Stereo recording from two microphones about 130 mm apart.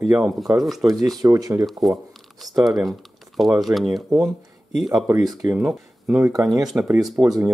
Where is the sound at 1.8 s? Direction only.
Centre (ahead or behind).